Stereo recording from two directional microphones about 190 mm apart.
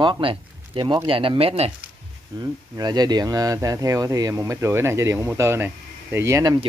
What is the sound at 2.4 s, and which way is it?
Speech, 20° right (ahead or behind).